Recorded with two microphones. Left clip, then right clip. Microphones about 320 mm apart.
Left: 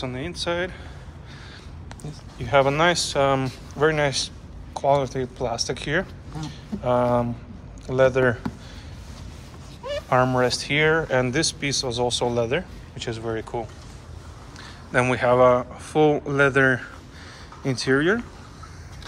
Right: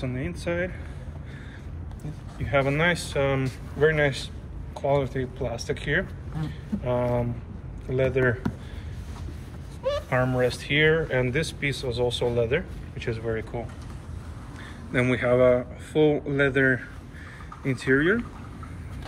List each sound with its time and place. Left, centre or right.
0.0 s speech: centre
2.4 s speech: centre
10.4 s speech: centre
14.9 s speech: left
17.6 s speech: centre